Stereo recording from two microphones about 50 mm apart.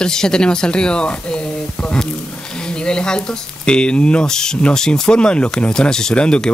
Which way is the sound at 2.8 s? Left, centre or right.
Centre.